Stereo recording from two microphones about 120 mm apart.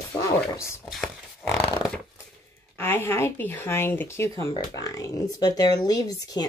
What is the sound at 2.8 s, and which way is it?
Speech, 20° left (ahead or behind).